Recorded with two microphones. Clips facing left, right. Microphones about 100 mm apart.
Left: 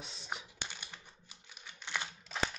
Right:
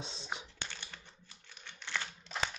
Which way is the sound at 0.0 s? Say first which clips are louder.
Right 1 dB; 25° right (ahead or behind).